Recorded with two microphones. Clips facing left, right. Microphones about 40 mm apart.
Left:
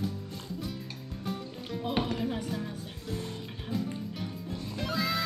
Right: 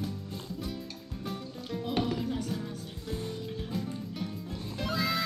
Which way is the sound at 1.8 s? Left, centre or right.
Centre.